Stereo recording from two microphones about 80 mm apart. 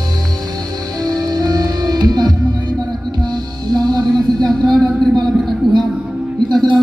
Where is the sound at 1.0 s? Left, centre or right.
Right.